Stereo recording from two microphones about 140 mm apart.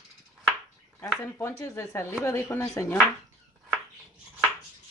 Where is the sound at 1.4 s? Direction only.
20° left (ahead or behind).